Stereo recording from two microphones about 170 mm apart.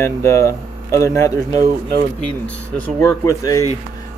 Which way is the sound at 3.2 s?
20° left (ahead or behind).